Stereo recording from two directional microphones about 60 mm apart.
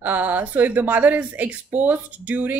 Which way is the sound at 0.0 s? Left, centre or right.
Right.